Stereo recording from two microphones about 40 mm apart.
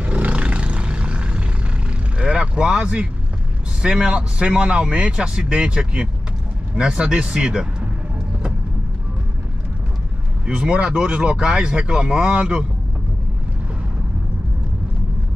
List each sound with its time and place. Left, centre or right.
0.0 s roar: right
2.1 s vehicle: right
3.8 s a man's voice: right
10.4 s a man's voice: right